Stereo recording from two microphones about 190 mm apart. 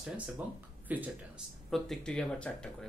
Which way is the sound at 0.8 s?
10° right (ahead or behind).